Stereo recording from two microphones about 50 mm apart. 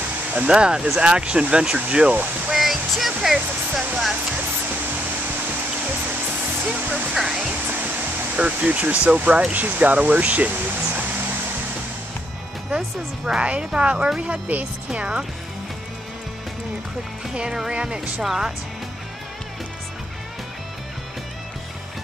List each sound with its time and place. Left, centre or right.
0.5 s speech: centre
2.5 s speech: centre
6.6 s speech: right
7.6 s music: right
8.4 s speech: right
13.4 s speech: right
14.2 s speech: right
14.9 s speech: centre
17.3 s speech: centre